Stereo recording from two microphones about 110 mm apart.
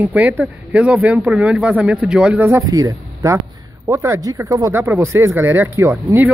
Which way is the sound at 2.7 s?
30° right (ahead or behind).